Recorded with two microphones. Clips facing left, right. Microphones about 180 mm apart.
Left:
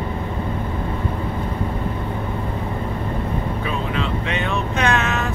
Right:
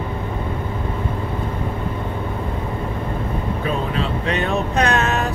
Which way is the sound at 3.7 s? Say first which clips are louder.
Right 3 dB; 40° right (ahead or behind).